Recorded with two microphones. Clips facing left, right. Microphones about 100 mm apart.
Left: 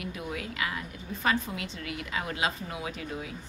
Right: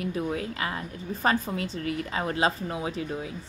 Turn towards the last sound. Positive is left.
turn(degrees=-30)  # may be behind; listen again after turning